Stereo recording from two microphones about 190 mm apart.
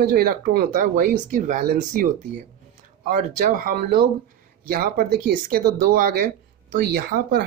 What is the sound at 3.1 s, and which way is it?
Speech, 45° right (ahead or behind).